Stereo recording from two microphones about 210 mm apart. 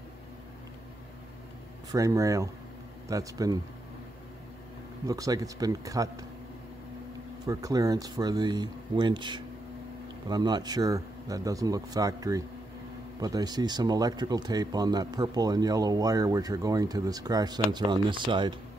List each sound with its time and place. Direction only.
1.9 s speech: 15° right (ahead or behind)
5.0 s speech: 15° right (ahead or behind)
7.4 s speech: 15° right (ahead or behind)